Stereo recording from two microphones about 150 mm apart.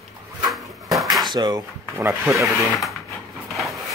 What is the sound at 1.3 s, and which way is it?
Speech, 25° right (ahead or behind).